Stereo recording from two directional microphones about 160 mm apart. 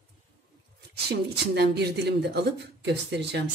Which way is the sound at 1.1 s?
90° right.